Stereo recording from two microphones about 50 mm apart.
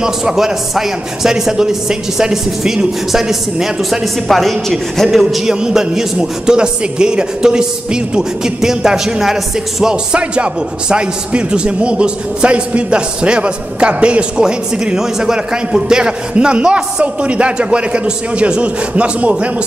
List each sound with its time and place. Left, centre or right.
0.0 s a man's voice: centre
5.4 s a man's voice: centre
10.1 s a man's voice: right
15.0 s a man's voice: centre; by 19.5 s right